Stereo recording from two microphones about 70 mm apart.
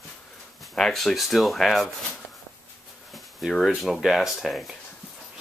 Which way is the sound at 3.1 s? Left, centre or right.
Centre.